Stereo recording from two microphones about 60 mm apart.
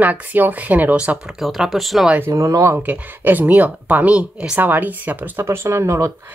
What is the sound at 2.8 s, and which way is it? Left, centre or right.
Speech, right.